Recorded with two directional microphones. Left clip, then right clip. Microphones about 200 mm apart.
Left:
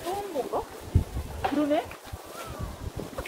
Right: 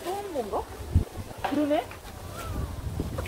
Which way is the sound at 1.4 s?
45° right (ahead or behind).